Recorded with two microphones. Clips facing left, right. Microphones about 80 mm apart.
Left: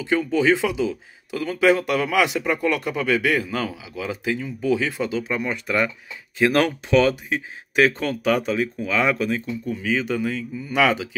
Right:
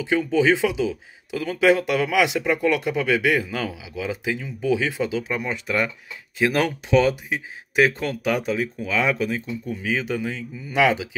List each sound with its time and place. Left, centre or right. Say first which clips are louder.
0.0 s speech: even; centre